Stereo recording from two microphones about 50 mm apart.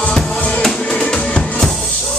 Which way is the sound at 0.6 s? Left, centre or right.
Centre.